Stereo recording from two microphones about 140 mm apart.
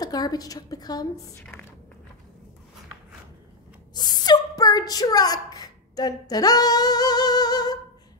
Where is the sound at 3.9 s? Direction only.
30° left (ahead or behind).